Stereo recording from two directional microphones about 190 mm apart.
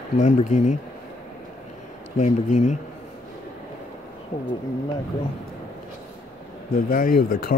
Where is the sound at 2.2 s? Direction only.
40° left (ahead or behind).